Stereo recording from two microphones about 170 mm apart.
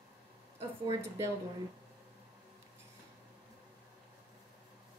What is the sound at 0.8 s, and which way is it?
Speech, 15° right (ahead or behind).